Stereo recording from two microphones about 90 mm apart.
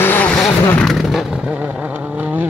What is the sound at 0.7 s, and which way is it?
Vehicle, 5° left (ahead or behind).